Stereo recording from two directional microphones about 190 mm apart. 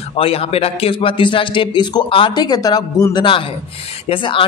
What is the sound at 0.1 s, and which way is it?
Speech, 30° left (ahead or behind).